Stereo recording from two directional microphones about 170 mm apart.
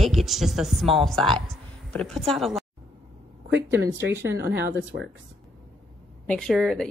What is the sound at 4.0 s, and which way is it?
Speech, 90° right.